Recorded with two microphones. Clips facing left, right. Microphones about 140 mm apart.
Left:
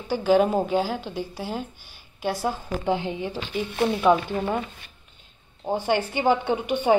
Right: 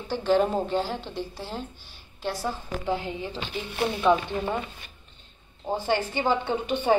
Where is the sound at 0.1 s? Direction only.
5° left (ahead or behind).